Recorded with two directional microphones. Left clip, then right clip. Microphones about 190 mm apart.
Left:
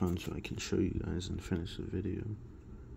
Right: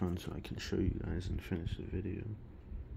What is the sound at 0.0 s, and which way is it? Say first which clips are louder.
Speech: left 4 dB; 5° left (ahead or behind).